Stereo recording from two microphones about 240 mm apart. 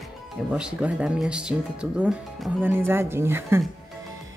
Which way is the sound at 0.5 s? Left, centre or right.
Centre.